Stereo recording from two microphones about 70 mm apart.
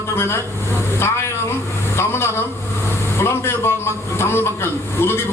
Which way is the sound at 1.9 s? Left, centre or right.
Left.